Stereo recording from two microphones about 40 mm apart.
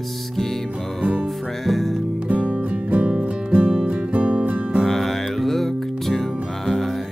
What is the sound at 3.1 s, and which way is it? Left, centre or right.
Music, right.